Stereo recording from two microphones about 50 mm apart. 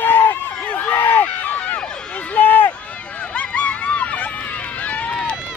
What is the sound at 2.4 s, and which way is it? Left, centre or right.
Run, left.